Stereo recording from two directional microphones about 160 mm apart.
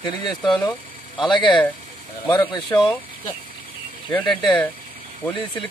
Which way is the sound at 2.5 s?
30° left (ahead or behind).